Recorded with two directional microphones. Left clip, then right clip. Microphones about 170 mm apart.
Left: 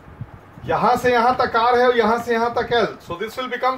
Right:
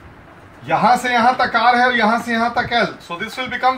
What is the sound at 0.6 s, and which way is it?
Speech, 25° left (ahead or behind).